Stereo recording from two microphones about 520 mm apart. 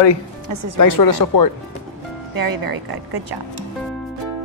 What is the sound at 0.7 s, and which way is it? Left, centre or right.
Speech, left.